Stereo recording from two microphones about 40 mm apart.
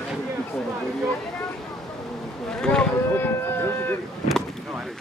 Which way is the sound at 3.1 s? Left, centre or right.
Left.